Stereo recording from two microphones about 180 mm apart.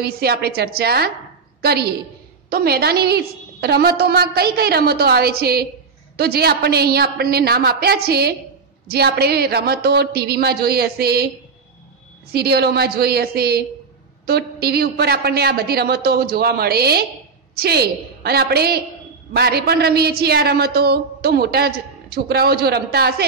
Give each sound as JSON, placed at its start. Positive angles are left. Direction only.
{"t": 0.0, "sound": "a woman's voice", "side_deg": -60}
{"t": 12.3, "sound": "a woman's voice", "side_deg": -60}